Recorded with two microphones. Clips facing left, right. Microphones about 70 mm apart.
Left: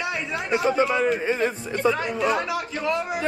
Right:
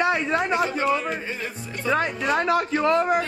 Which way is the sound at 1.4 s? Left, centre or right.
Left.